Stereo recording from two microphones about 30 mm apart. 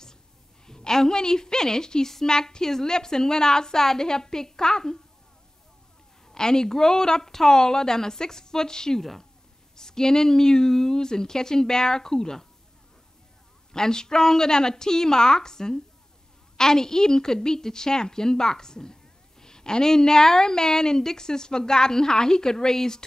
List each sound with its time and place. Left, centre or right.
0.7 s a woman's voice: centre
6.2 s a woman's voice: left
13.7 s a woman's voice: left